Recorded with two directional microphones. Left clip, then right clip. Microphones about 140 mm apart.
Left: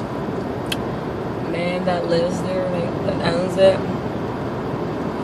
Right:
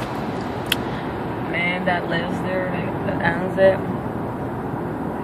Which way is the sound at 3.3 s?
25° left (ahead or behind).